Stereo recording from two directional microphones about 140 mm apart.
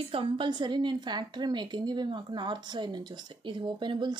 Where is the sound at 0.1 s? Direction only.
40° right (ahead or behind).